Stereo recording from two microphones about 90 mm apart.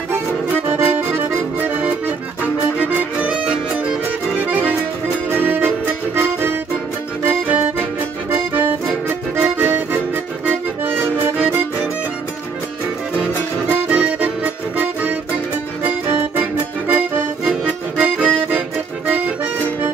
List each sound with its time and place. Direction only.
0.7 s accordion: 20° right (ahead or behind)
2.8 s music: 15° right (ahead or behind)
4.5 s accordion: 20° right (ahead or behind)
5.4 s music: 20° right (ahead or behind)
8.3 s accordion: 25° right (ahead or behind)
13.7 s accordion: 20° right (ahead or behind)